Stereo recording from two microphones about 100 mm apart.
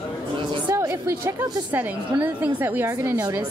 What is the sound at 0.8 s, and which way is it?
A woman's voice, 30° right (ahead or behind).